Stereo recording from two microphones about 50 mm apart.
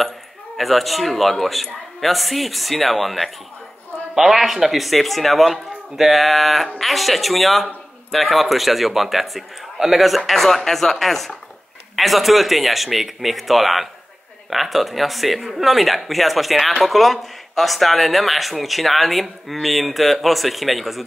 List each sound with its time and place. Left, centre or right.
0.6 s a man's voice: centre
4.1 s a man's voice: centre